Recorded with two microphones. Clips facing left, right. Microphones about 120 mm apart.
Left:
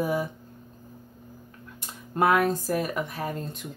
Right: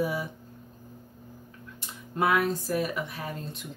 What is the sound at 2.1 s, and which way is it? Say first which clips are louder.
Speech: left 3 dB; 50° left (ahead or behind).